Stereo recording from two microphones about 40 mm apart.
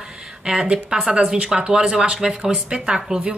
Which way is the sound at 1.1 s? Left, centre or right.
Right.